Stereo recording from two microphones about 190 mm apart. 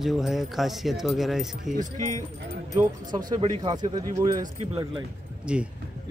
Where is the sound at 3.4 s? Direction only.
25° right (ahead or behind).